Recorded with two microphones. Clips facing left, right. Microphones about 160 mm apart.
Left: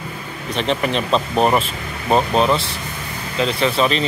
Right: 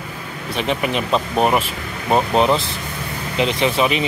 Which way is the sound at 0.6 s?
10° right (ahead or behind).